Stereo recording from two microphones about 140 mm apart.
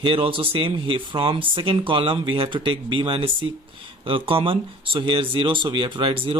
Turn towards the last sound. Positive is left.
turn(degrees=-40)  # may be behind; listen again after turning